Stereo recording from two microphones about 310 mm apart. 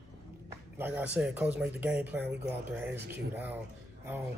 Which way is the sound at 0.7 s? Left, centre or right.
Centre.